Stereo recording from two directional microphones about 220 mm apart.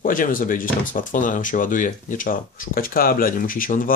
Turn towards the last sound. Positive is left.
turn(degrees=40)  # may be behind; listen again after turning